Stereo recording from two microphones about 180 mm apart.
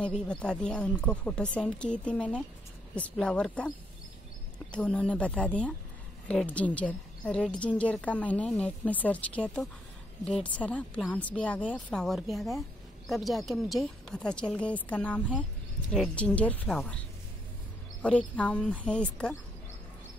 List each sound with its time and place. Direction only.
0.0 s a woman's voice: 5° left (ahead or behind)
18.0 s a woman's voice: 5° left (ahead or behind)